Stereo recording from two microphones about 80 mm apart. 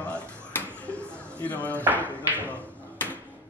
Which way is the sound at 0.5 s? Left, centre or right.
Centre.